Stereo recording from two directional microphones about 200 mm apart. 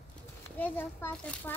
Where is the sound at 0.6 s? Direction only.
10° left (ahead or behind).